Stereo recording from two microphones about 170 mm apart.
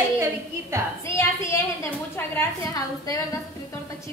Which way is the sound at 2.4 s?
20° left (ahead or behind).